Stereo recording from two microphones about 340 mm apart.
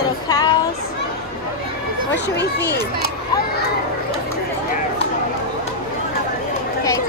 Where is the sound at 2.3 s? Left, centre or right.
Left.